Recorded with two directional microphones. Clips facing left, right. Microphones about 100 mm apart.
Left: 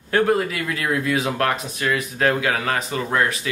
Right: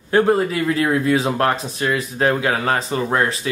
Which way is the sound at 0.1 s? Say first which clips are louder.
Right 3 dB; 25° right (ahead or behind).